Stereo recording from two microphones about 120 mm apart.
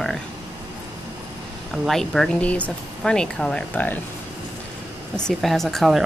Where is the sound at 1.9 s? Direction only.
5° left (ahead or behind).